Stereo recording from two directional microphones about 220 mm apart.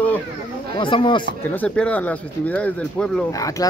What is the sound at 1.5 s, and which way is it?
Speech, 5° left (ahead or behind).